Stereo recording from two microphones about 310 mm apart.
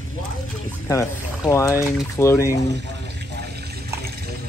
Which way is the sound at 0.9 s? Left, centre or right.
Centre.